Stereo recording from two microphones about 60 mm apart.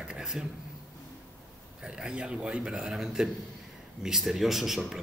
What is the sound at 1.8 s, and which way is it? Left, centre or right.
A man's voice, centre.